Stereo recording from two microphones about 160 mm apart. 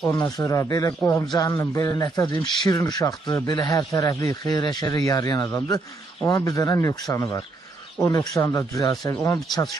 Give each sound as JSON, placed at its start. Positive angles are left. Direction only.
{"t": 0.0, "sound": "speech", "side_deg": 20}